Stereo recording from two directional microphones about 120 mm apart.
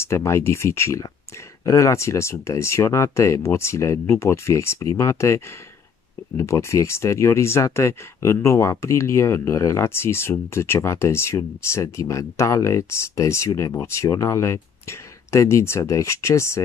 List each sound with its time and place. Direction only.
0.0 s speech: 25° left (ahead or behind)